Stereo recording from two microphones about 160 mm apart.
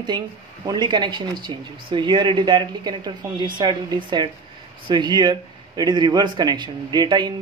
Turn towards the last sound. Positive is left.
turn(degrees=-25)  # may be behind; listen again after turning